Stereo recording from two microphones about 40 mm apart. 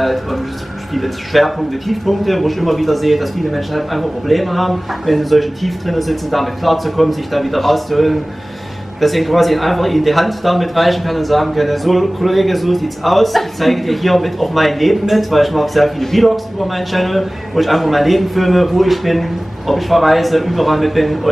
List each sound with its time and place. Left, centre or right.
0.0 s speech: centre